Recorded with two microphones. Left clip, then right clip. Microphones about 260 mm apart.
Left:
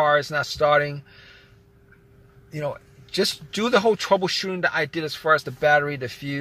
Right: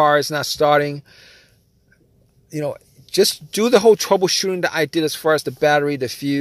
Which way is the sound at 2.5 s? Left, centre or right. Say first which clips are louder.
Right 4 dB; right.